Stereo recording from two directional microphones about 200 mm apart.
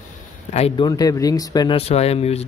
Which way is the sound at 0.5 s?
25° left (ahead or behind).